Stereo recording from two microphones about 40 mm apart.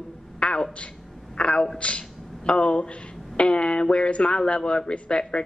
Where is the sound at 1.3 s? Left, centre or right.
Left.